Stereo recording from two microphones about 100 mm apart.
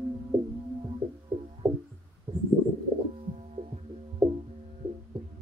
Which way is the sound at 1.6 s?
25° right (ahead or behind).